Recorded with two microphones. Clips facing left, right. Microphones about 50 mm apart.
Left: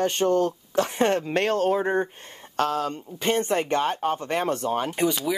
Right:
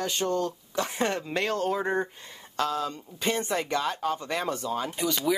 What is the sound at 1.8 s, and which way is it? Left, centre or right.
Speech, centre.